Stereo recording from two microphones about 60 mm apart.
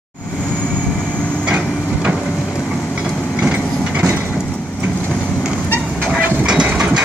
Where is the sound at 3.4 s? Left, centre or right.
Right.